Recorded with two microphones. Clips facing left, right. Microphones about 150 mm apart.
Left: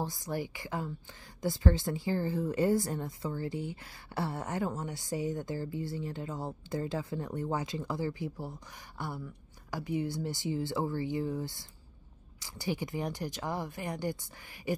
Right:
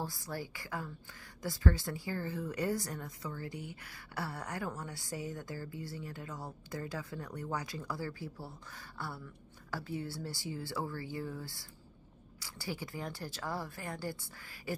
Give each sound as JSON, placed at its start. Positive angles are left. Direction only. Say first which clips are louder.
{"t": 0.0, "sound": "speech", "louder": "left 5 dB", "side_deg": 20}